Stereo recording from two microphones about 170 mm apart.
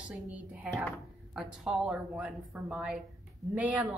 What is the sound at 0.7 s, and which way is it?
Speech, centre (ahead or behind).